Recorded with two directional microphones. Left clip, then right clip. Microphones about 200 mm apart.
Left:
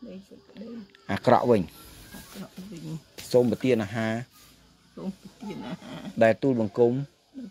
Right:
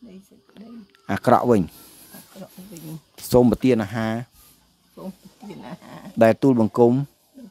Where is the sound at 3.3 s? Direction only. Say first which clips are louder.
Right 5 dB; 40° right (ahead or behind).